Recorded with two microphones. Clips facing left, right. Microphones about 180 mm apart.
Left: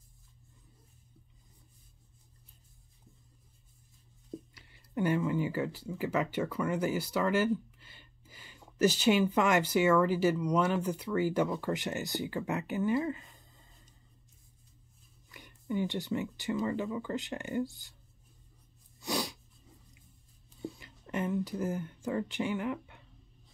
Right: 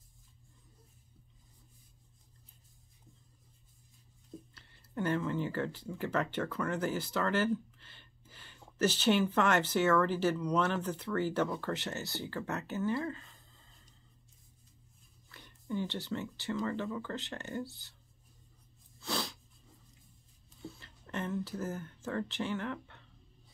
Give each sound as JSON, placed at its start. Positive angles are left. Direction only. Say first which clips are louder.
{"t": 4.6, "sound": "speech", "louder": "left 4 dB", "side_deg": 10}
{"t": 15.2, "sound": "speech", "louder": "left 4 dB", "side_deg": 15}
{"t": 18.9, "sound": "sneeze", "louder": "left 3 dB", "side_deg": 15}
{"t": 20.7, "sound": "speech", "louder": "left 3 dB", "side_deg": 10}